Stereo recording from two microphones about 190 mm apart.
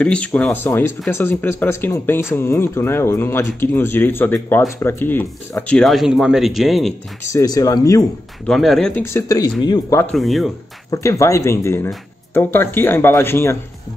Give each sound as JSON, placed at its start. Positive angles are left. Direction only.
{"t": 0.0, "sound": "speech", "side_deg": 5}
{"t": 7.3, "sound": "speech", "side_deg": 20}
{"t": 8.5, "sound": "speech", "side_deg": 0}
{"t": 10.1, "sound": "speech", "side_deg": 0}
{"t": 10.9, "sound": "speech", "side_deg": 15}